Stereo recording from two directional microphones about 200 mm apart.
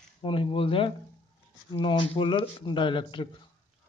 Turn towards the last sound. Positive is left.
turn(degrees=25)  # may be behind; listen again after turning